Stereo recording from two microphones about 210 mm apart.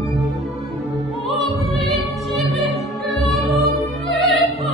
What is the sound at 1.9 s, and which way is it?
Music, centre (ahead or behind).